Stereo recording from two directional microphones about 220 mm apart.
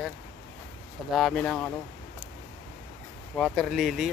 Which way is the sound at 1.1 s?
Centre (ahead or behind).